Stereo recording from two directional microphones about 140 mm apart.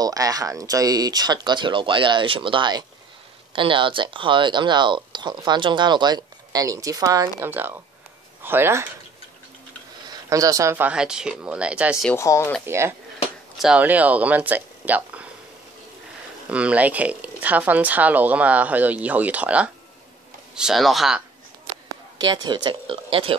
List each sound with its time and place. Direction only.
0.0 s speech: 25° right (ahead or behind)
10.3 s speech: 25° right (ahead or behind); by 12.1 s 5° right (ahead or behind)
12.1 s speech: 20° left (ahead or behind)
12.6 s speech: 20° right (ahead or behind)
13.6 s speech: 5° right (ahead or behind)
16.4 s speech: 10° right (ahead or behind)
21.8 s speech: 30° right (ahead or behind)